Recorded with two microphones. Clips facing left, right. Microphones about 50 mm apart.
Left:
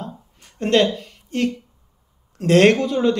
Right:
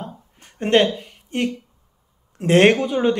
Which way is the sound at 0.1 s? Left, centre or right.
Right.